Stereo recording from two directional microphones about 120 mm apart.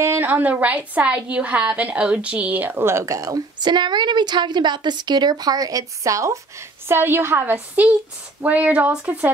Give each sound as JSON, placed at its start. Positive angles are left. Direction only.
{"t": 0.0, "sound": "a woman's voice", "side_deg": -20}